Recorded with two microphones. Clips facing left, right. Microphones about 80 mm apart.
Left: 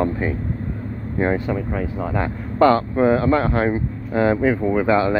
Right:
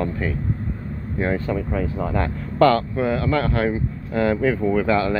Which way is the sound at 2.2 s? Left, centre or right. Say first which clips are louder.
Left 1 dB; left.